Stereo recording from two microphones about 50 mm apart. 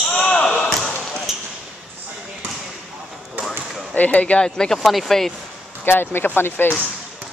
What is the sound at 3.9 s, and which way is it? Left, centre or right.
Speech, left.